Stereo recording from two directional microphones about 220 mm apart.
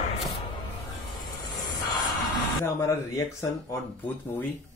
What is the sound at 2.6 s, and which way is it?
Speech, 10° left (ahead or behind).